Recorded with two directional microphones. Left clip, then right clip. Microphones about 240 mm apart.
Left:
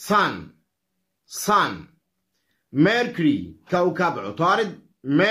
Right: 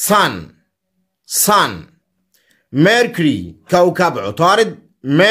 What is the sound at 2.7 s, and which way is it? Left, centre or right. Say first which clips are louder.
A man's voice: right 8 dB; right.